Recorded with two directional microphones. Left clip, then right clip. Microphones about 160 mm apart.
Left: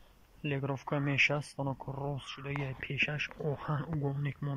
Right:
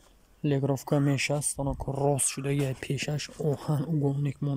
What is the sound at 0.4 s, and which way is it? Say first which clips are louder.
Speech: right 8 dB; 40° right (ahead or behind).